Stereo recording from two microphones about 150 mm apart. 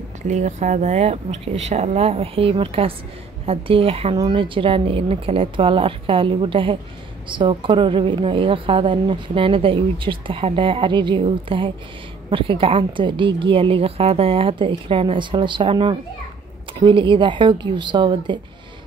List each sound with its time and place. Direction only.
0.3 s a woman's voice: 50° right (ahead or behind); by 18.4 s 30° right (ahead or behind)